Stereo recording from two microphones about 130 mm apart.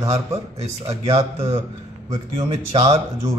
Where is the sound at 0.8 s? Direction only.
55° right (ahead or behind).